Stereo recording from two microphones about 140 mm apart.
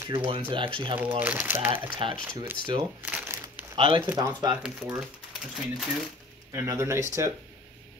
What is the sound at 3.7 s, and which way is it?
Speech, 40° right (ahead or behind).